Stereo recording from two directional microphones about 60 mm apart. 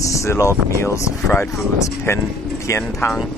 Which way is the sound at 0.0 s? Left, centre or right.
Left.